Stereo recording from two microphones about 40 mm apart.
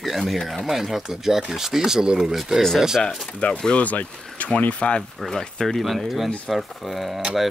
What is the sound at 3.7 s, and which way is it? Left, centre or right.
Speech, left.